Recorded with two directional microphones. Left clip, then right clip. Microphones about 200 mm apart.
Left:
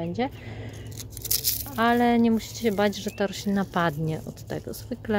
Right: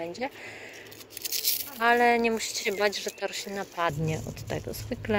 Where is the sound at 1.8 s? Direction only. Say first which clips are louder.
Even; 10° left (ahead or behind).